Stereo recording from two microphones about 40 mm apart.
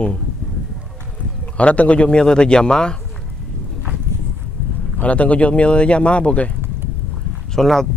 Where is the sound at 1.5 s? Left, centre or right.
Left.